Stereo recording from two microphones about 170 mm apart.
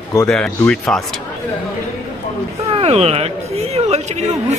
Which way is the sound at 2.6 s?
35° right (ahead or behind).